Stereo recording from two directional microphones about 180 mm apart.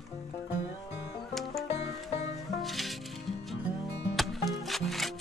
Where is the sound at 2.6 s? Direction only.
Centre (ahead or behind).